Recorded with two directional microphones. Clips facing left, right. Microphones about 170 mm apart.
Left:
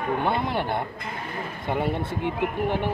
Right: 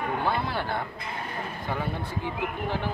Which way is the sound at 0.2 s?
20° left (ahead or behind).